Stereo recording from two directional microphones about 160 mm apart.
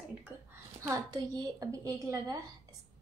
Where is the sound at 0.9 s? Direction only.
20° right (ahead or behind).